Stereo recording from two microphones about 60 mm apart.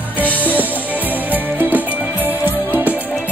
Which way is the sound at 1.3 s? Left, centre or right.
Right.